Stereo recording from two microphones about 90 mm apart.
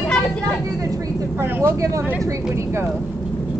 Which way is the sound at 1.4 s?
25° right (ahead or behind).